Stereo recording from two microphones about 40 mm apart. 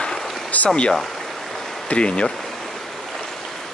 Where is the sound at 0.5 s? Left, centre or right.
Left.